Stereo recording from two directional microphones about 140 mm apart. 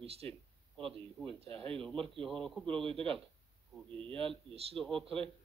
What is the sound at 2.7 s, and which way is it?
Speech, 40° right (ahead or behind).